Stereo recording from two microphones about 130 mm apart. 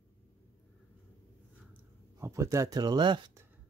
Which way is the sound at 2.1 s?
20° right (ahead or behind).